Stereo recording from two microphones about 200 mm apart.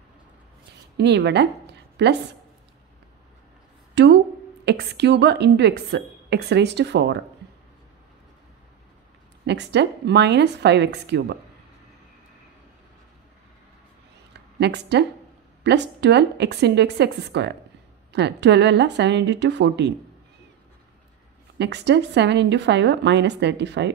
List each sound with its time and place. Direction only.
0.9 s a woman's voice: 60° right (ahead or behind)
3.9 s a woman's voice: 60° right (ahead or behind)
9.4 s a woman's voice: 55° right (ahead or behind)
14.3 s a sound: 55° right (ahead or behind)
15.6 s a woman's voice: 60° right (ahead or behind)
21.5 s a woman's voice: 60° right (ahead or behind)